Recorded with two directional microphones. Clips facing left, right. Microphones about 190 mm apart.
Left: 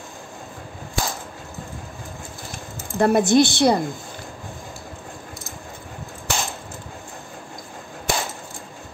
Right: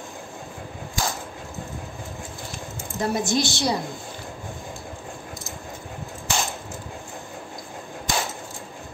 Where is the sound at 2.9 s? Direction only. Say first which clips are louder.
Left 8 dB; 60° left (ahead or behind).